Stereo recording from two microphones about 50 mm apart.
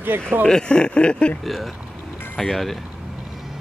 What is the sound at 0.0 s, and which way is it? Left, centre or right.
Speech, right.